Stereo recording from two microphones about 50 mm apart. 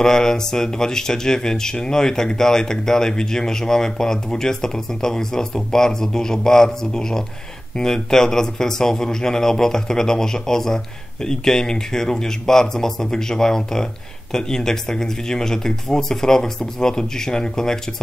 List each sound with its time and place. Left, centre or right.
0.0 s speech: centre